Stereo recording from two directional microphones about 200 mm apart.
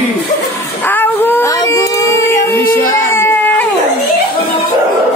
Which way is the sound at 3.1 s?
10° left (ahead or behind).